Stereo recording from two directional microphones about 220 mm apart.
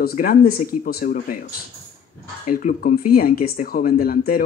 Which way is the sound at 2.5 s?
35° left (ahead or behind).